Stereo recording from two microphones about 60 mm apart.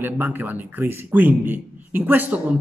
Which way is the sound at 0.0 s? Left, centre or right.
Right.